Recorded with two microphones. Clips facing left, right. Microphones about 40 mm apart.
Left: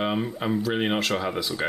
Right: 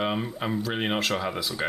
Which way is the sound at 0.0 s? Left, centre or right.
Centre.